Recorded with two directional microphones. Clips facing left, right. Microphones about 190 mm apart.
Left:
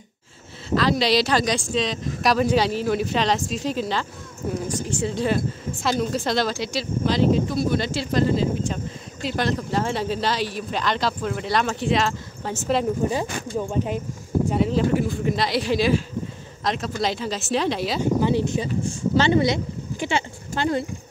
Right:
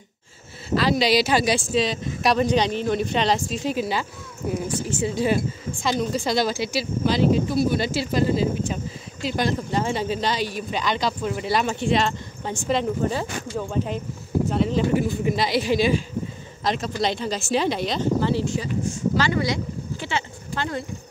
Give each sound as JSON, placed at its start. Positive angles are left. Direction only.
{"t": 0.7, "sound": "speech", "side_deg": -5}
{"t": 18.2, "sound": "speech", "side_deg": 20}